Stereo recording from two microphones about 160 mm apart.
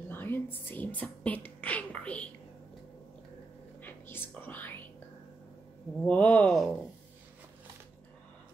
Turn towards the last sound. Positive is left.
turn(degrees=5)  # may be behind; listen again after turning